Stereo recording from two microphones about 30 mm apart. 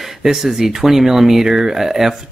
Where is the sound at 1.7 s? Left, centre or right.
Centre.